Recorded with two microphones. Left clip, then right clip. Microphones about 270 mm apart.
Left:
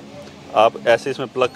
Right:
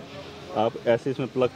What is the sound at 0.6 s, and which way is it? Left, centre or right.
Speech, left.